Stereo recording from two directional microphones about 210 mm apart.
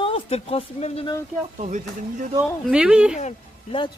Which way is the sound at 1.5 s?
35° right (ahead or behind).